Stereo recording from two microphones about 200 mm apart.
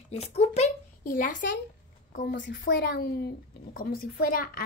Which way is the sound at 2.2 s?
60° left (ahead or behind).